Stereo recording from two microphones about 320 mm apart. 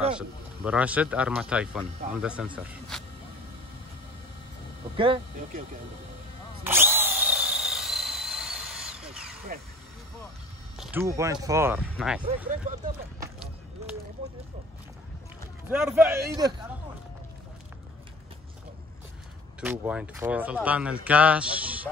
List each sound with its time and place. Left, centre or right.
0.7 s speech: centre
4.9 s speech: centre
6.6 s drill: centre
9.5 s speech: right
10.8 s speech: centre
12.4 s speech: right
13.2 s a sound: centre
15.7 s speech: centre
19.6 s speech: centre